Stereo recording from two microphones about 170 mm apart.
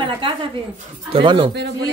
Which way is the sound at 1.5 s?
90° right.